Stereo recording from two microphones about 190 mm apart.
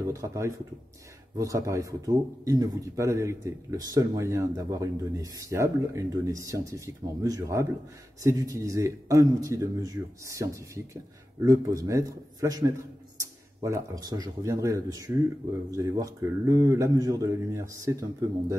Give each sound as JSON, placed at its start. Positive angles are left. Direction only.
{"t": 0.1, "sound": "speech", "side_deg": -15}